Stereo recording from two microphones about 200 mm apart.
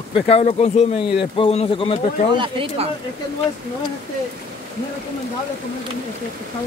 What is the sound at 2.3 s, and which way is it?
Speech, 30° right (ahead or behind).